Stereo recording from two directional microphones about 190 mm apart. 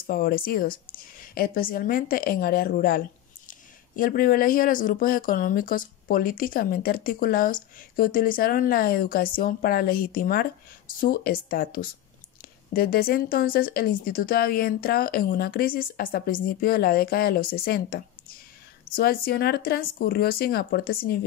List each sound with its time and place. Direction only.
0.0 s speech: 50° left (ahead or behind)